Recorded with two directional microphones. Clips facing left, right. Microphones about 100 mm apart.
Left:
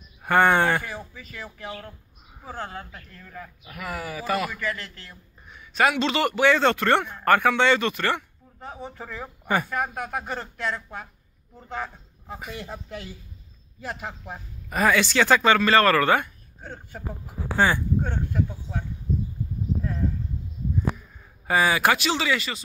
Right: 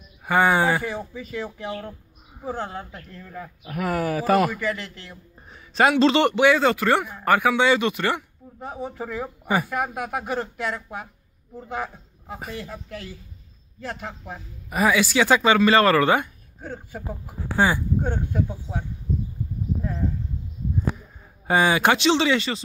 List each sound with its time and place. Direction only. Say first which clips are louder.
0.2 s speech: even; 5° right (ahead or behind)
0.8 s speech: right 6 dB; 20° right (ahead or behind)
3.6 s speech: right 9 dB; 45° right (ahead or behind)
4.6 s speech: right 3 dB; 15° right (ahead or behind)
5.5 s a man's voice: right 3 dB; 30° right (ahead or behind)
6.4 s a man's voice: left 1 dB; 10° right (ahead or behind)
12.5 s speech: right 1 dB; 20° left (ahead or behind)
13.7 s a man's voice: right 1 dB; 5° left (ahead or behind)
14.7 s speech: right 1 dB; 10° right (ahead or behind)
16.6 s speech: right 4 dB; 5° right (ahead or behind)
18.5 s speech: right 2 dB; 15° right (ahead or behind)
21.5 s speech: right 2 dB; 25° right (ahead or behind)